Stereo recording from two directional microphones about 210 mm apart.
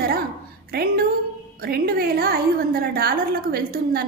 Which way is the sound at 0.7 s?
45° right (ahead or behind).